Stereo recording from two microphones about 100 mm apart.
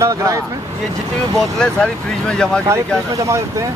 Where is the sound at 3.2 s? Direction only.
30° right (ahead or behind).